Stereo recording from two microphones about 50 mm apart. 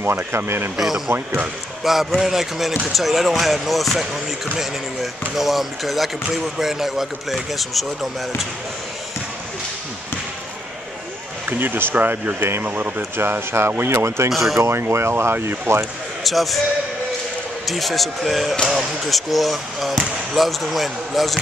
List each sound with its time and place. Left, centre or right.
0.0 s speech: right
0.7 s speech: centre
1.1 s speech: right
1.9 s speech: centre
11.4 s speech: right
13.1 s speech: right
14.0 s speech: right
14.3 s speech: centre
14.6 s speech: right
16.3 s speech: centre
17.6 s speech: centre